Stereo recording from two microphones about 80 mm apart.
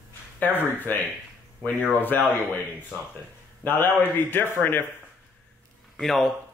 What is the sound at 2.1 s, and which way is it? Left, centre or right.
Speech, left.